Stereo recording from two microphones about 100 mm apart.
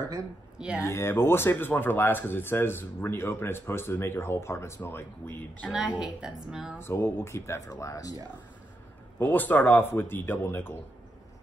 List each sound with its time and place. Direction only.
0.6 s speech: 10° right (ahead or behind)
0.8 s speech: 25° left (ahead or behind)
5.7 s a woman's voice: 5° right (ahead or behind)
6.8 s speech: 25° left (ahead or behind)
9.2 s speech: 15° left (ahead or behind)